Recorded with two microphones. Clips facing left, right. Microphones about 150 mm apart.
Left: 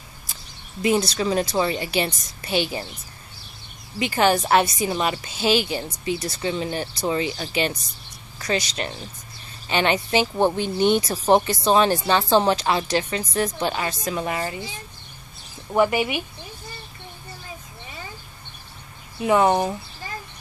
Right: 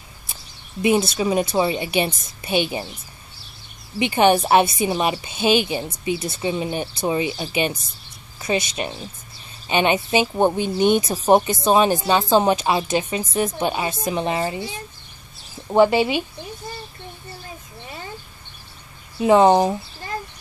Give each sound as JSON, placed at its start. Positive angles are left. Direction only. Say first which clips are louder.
{"t": 1.1, "sound": "a woman's voice", "louder": "right 2 dB", "side_deg": -15}
{"t": 4.0, "sound": "a woman's voice", "louder": "right 3 dB", "side_deg": -20}
{"t": 15.7, "sound": "a woman's voice", "louder": "right 4 dB", "side_deg": -25}
{"t": 19.1, "sound": "a woman's voice", "louder": "right 5 dB", "side_deg": -30}